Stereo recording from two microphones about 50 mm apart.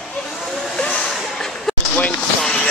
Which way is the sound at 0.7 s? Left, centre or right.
Centre.